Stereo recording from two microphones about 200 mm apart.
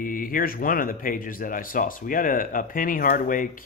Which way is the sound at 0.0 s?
45° left (ahead or behind).